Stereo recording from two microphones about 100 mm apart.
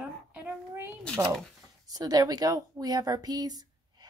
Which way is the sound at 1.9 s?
40° right (ahead or behind).